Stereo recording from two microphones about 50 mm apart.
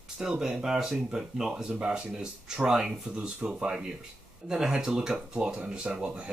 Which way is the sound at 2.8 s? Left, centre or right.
Right.